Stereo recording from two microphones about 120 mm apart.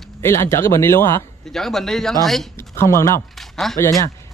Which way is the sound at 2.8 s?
25° left (ahead or behind).